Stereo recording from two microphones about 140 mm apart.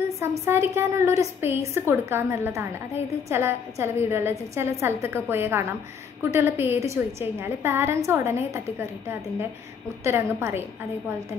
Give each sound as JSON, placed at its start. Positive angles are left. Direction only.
{"t": 0.2, "sound": "a woman's voice", "side_deg": -20}
{"t": 10.0, "sound": "a woman's voice", "side_deg": -15}